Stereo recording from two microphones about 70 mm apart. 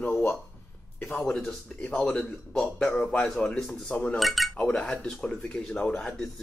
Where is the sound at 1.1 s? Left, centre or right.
Centre.